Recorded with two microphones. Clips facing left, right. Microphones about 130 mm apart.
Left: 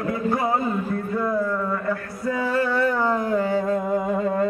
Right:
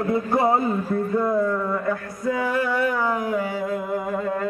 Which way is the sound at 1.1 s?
15° right (ahead or behind).